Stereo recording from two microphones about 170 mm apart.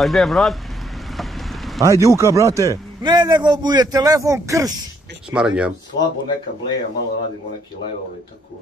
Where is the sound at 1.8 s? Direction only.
20° right (ahead or behind).